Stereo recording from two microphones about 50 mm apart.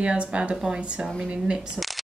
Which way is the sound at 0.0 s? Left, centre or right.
Right.